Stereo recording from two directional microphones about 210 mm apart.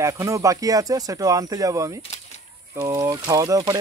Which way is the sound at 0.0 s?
15° right (ahead or behind).